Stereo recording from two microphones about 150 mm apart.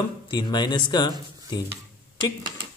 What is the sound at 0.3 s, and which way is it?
Speech, 30° left (ahead or behind).